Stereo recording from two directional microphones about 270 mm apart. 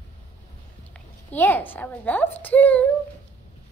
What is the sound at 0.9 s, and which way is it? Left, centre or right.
A woman's voice, centre.